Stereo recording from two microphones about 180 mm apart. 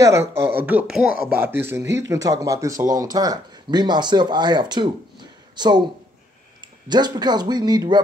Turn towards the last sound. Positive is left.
turn(degrees=-20)  # may be behind; listen again after turning